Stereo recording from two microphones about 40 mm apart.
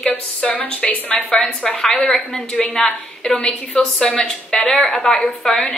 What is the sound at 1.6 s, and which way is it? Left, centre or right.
Speech, centre.